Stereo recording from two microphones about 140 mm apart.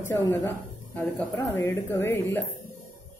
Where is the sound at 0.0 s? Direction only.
15° left (ahead or behind).